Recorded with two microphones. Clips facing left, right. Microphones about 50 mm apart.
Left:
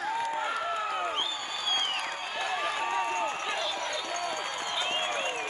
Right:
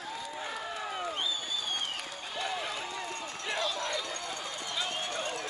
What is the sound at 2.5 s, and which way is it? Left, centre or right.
Run, left.